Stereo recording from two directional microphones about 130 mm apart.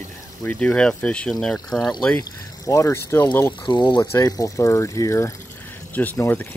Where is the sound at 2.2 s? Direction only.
25° left (ahead or behind).